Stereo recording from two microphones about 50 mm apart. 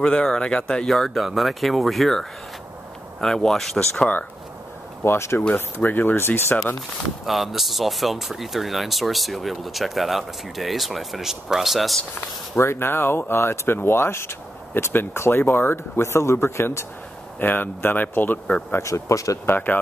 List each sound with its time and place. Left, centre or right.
0.0 s speech: centre
0.8 s speech: centre
5.0 s speech: left
5.5 s speech: left
7.2 s speech: centre
12.5 s speech: left
16.0 s speech: left
17.4 s speech: left
18.8 s speech: left
19.4 s speech: left